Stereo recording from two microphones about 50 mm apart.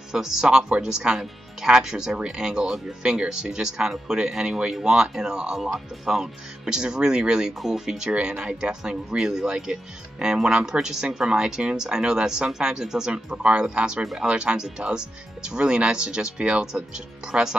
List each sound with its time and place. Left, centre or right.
0.1 s speech: centre